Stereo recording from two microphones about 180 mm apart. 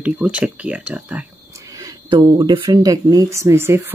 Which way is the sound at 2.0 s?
25° right (ahead or behind).